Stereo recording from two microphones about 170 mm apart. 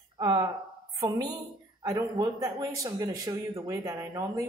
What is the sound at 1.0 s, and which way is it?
Speech, 20° right (ahead or behind).